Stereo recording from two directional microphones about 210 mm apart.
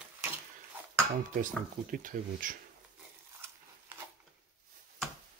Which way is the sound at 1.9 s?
40° right (ahead or behind).